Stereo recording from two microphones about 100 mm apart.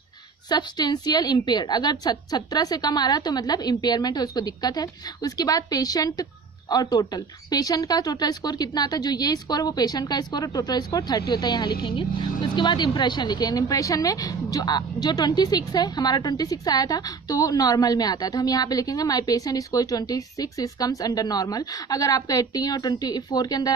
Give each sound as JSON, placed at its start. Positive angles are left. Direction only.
{"t": 0.5, "sound": "a woman's voice", "side_deg": 45}